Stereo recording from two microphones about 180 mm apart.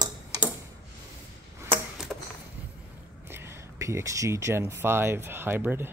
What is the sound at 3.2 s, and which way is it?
Speech, 15° right (ahead or behind).